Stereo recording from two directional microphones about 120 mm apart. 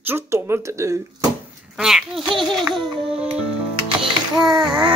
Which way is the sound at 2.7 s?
45° right (ahead or behind).